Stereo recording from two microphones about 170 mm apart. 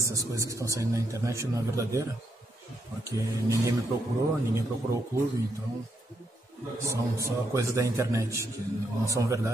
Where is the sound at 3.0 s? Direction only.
20° right (ahead or behind).